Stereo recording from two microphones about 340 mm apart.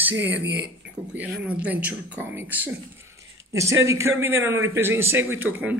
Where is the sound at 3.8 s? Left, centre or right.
Centre.